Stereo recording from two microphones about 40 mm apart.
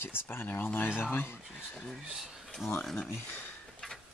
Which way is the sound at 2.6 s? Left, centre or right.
Centre.